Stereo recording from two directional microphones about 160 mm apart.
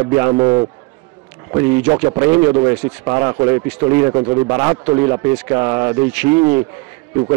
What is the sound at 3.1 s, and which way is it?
Speech, 25° right (ahead or behind).